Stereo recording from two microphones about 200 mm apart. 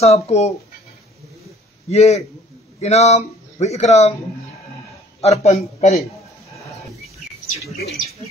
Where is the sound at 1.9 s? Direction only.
30° left (ahead or behind).